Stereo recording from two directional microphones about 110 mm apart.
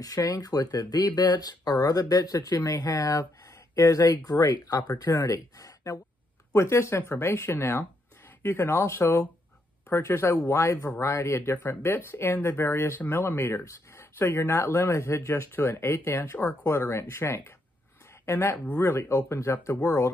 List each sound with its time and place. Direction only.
0.3 s speech: 35° left (ahead or behind)